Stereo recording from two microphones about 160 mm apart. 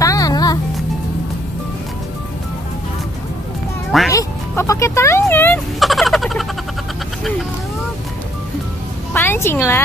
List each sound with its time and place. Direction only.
0.0 s music: 20° left (ahead or behind)
4.1 s speech: 20° left (ahead or behind)
5.8 s a sound: centre (ahead or behind)
9.1 s music: 15° left (ahead or behind)